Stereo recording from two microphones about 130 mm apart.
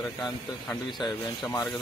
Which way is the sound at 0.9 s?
Centre (ahead or behind).